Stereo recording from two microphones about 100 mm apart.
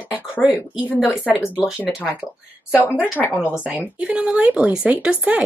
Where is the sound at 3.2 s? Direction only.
20° left (ahead or behind).